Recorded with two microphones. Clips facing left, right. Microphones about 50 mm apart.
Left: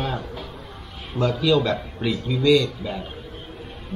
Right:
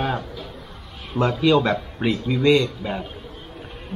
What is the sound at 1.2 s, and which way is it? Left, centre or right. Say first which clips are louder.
Speech: right 2 dB; right.